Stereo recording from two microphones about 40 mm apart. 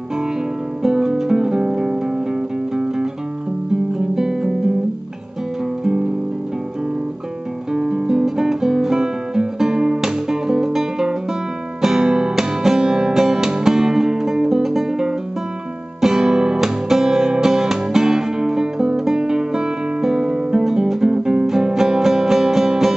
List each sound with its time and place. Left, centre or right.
0.8 s music: centre
4.1 s guitar: centre
7.7 s guitar: centre
11.8 s music: centre
16.0 s guitar: centre
16.5 s music: centre
21.5 s music: centre